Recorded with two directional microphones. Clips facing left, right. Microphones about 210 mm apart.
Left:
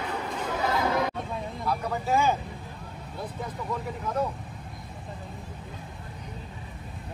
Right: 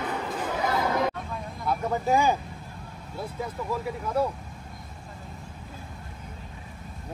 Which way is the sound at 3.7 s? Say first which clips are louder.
Right 2 dB; 5° right (ahead or behind).